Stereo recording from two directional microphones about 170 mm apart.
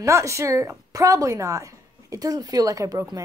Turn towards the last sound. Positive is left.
turn(degrees=-20)  # may be behind; listen again after turning